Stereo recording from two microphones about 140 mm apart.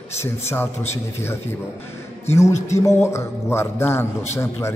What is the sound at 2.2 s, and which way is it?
A man's voice, 20° left (ahead or behind).